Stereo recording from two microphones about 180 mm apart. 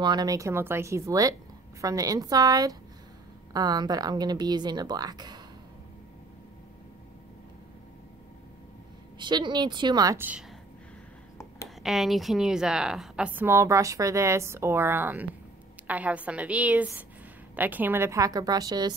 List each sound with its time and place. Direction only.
0.0 s a woman's voice: 25° right (ahead or behind)
9.2 s speech: 25° right (ahead or behind)
11.8 s a woman's voice: centre (ahead or behind); by 18.9 s 20° right (ahead or behind)